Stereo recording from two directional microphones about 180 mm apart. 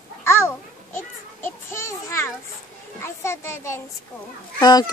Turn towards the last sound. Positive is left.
turn(degrees=20)  # may be behind; listen again after turning